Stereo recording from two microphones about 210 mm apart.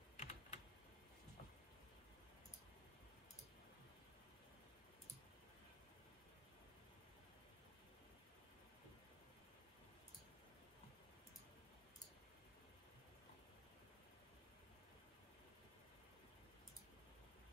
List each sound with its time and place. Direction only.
0.2 s computer keyboard: 30° left (ahead or behind)